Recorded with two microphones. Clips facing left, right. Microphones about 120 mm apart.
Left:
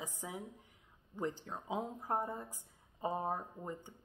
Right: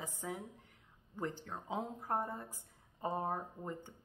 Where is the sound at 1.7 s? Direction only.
15° left (ahead or behind).